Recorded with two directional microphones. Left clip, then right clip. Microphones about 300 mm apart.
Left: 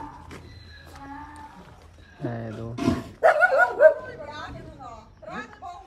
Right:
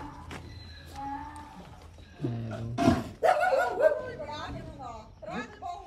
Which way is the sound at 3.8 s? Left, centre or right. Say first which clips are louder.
Left 8 dB; centre.